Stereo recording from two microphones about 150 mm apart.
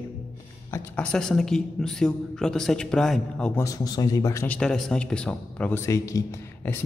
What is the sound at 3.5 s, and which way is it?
Speech, 25° left (ahead or behind).